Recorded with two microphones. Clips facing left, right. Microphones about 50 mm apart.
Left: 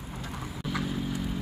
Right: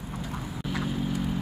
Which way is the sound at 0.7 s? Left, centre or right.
Centre.